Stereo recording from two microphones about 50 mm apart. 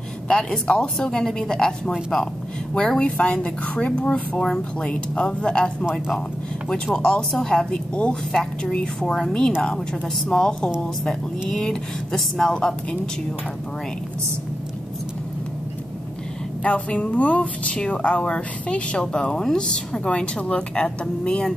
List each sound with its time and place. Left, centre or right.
0.3 s a woman's voice: centre
7.0 s a woman's voice: centre
8.3 s a woman's voice: centre
16.6 s speech: left